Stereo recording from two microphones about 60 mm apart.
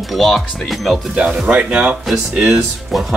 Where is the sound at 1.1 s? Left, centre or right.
Centre.